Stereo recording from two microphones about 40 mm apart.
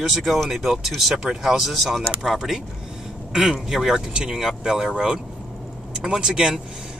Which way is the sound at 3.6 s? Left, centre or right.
Centre.